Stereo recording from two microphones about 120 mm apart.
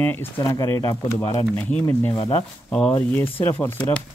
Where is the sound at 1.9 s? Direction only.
20° left (ahead or behind).